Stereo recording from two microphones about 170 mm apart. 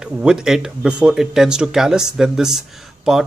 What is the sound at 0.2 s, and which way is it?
Speech, 5° right (ahead or behind).